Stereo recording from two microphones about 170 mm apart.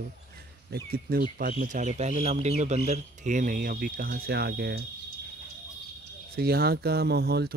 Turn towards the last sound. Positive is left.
turn(degrees=-70)  # may be behind; listen again after turning